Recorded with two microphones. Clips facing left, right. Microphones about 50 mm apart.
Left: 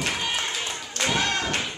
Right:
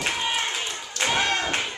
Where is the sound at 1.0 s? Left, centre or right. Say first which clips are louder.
Right 1 dB; centre.